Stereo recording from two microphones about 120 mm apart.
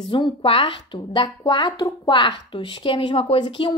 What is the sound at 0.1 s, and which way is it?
A woman's voice, 45° left (ahead or behind).